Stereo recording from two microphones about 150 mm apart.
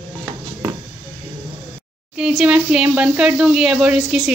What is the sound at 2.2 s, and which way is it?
A woman's voice, 5° right (ahead or behind).